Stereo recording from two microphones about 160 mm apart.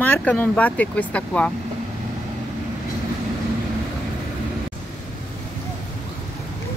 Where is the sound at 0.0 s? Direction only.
10° left (ahead or behind).